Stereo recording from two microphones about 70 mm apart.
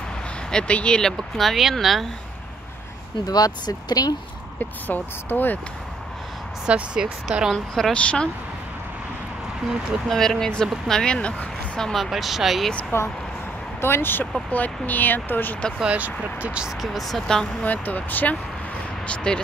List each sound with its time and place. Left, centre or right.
0.5 s speech: centre
3.3 s speech: left
4.6 s speech: left
6.6 s speech: centre
7.5 s speech: centre
10.0 s speech: centre
11.9 s speech: centre
12.9 s speech: left
15.8 s speech: centre
16.8 s speech: centre
17.6 s speech: left
19.0 s speech: centre